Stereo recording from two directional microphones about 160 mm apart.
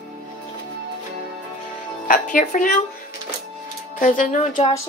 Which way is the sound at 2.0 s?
55° left (ahead or behind).